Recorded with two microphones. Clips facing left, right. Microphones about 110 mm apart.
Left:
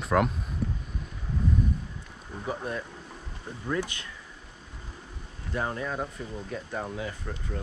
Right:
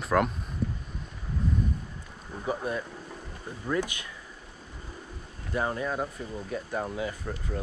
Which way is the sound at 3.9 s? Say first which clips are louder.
Right 1 dB; 10° right (ahead or behind).